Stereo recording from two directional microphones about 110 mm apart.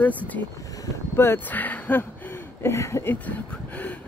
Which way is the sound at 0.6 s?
30° left (ahead or behind).